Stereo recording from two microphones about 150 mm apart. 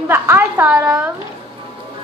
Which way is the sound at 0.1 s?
15° right (ahead or behind).